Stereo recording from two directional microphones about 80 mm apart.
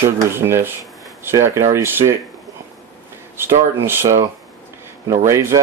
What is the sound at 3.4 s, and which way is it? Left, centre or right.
Speech, right.